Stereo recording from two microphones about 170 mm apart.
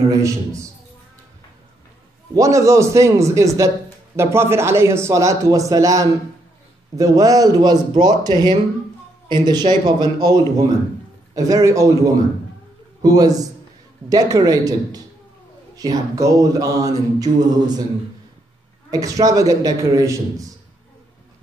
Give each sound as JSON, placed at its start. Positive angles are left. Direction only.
{"t": 0.1, "sound": "speech", "side_deg": -20}
{"t": 2.3, "sound": "speech", "side_deg": -20}
{"t": 18.9, "sound": "speech", "side_deg": -20}